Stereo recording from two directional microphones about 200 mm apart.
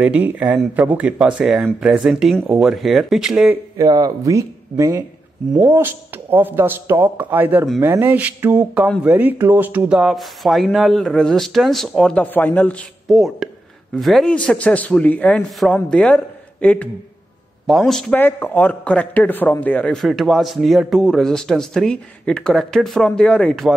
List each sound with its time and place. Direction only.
0.0 s a man's voice: 5° right (ahead or behind)
3.7 s a man's voice: 20° right (ahead or behind); by 23.7 s 5° left (ahead or behind)